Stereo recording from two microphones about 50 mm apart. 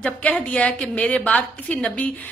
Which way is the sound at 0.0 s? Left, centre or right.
Centre.